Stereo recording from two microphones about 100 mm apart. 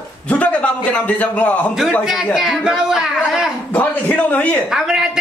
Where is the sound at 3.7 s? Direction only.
15° left (ahead or behind).